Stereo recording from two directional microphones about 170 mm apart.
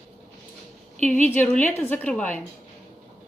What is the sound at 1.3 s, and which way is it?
A woman's voice, 10° left (ahead or behind).